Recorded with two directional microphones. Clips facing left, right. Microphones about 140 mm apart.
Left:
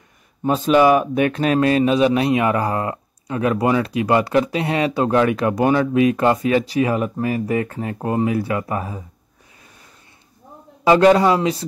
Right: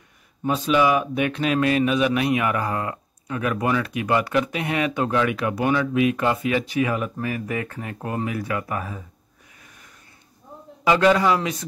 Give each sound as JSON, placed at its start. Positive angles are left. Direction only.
{"t": 0.4, "sound": "speech", "side_deg": 45}
{"t": 10.8, "sound": "speech", "side_deg": 35}